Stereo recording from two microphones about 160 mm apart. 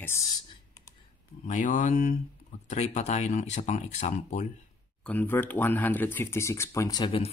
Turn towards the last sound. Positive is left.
turn(degrees=30)  # may be behind; listen again after turning